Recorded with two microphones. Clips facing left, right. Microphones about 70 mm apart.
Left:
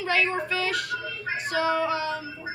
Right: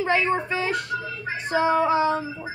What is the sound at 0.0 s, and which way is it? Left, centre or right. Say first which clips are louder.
A woman's voice: right 3 dB; right.